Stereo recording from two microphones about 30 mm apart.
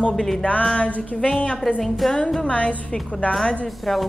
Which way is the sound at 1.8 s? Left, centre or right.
Centre.